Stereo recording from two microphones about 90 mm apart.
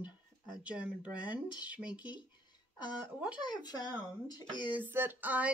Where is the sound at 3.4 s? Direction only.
50° left (ahead or behind).